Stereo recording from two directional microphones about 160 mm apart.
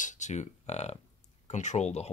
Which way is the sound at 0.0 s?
50° left (ahead or behind).